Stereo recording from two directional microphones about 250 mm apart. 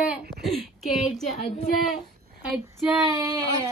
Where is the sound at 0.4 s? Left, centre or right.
Centre.